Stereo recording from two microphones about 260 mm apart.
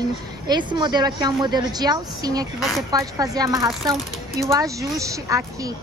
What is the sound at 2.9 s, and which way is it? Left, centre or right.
A woman's voice, centre.